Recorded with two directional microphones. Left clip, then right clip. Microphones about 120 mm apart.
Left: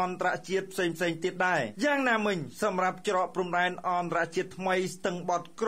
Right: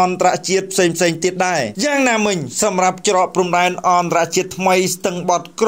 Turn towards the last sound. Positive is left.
turn(degrees=-10)  # may be behind; listen again after turning